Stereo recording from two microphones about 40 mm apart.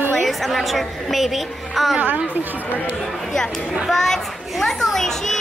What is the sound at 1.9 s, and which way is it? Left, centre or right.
Speech, right.